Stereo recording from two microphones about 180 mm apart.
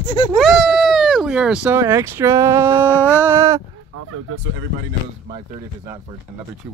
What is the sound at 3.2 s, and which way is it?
Speech, 15° right (ahead or behind).